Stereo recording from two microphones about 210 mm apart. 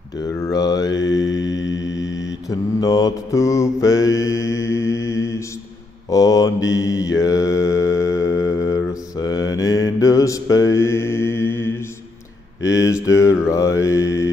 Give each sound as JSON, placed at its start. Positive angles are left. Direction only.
{"t": 0.2, "sound": "a sound", "side_deg": 15}
{"t": 0.9, "sound": "mantra", "side_deg": 60}
{"t": 2.8, "sound": "mantra", "side_deg": 15}